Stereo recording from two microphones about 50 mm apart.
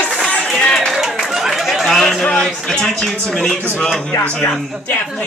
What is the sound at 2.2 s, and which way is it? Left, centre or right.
Music, left.